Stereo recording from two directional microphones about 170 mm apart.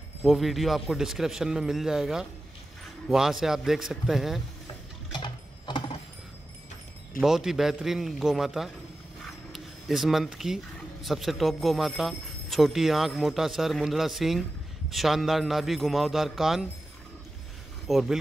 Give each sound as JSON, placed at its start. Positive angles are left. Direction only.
{"t": 0.2, "sound": "a man's voice", "side_deg": 0}
{"t": 5.2, "sound": "a sound", "side_deg": 30}
{"t": 7.2, "sound": "a man's voice", "side_deg": -5}
{"t": 17.8, "sound": "speech", "side_deg": 0}